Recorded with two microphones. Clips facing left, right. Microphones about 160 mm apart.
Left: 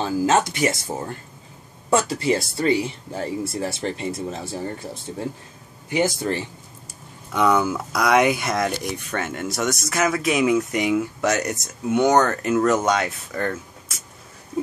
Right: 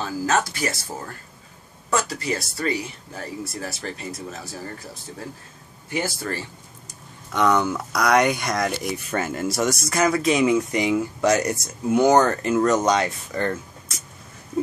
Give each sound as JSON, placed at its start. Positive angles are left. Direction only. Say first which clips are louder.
{"t": 0.0, "sound": "speech", "louder": "left 4 dB", "side_deg": 25}
{"t": 7.3, "sound": "speech", "louder": "left 1 dB", "side_deg": 5}